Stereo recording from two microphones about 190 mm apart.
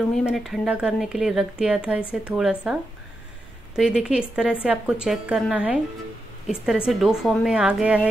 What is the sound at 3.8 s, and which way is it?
Speech, 5° right (ahead or behind).